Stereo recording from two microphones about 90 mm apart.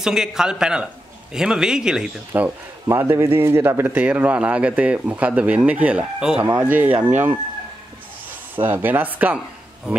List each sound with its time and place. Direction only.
0.0 s speech: 5° right (ahead or behind)
2.3 s speech: 20° right (ahead or behind)
6.6 s speech: 20° right (ahead or behind)
8.5 s speech: 20° right (ahead or behind)